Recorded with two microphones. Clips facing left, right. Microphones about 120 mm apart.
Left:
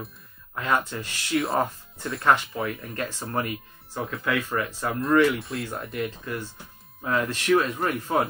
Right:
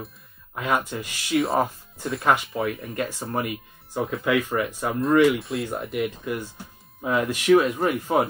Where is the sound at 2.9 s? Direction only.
10° right (ahead or behind).